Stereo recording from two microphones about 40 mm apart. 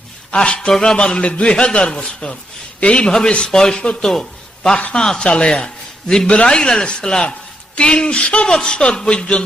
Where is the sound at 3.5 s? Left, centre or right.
Centre.